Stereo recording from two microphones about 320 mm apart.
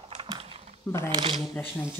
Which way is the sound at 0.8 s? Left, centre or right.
Centre.